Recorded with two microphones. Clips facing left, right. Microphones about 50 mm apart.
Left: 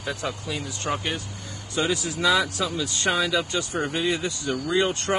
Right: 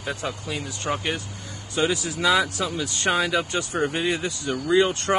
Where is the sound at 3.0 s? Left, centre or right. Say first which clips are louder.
Right 1 dB; right.